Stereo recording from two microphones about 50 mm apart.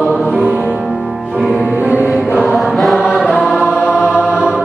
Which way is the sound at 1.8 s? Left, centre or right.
Right.